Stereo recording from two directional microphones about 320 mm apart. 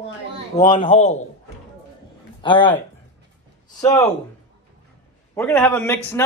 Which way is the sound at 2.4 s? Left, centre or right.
Centre.